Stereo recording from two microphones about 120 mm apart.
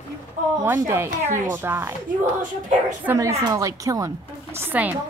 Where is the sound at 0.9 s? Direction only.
20° right (ahead or behind).